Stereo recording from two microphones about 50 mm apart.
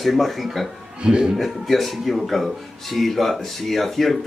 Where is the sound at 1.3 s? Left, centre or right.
Centre.